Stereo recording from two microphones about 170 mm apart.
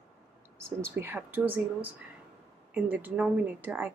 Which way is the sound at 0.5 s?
15° right (ahead or behind).